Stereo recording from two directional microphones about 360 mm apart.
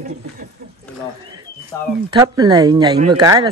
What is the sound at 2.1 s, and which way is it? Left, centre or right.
Speech, centre.